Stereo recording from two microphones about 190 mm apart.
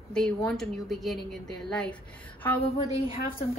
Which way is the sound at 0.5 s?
Centre (ahead or behind).